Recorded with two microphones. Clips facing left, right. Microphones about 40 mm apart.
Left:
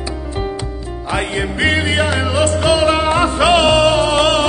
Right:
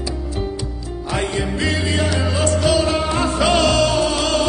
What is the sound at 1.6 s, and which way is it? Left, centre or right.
Music, left.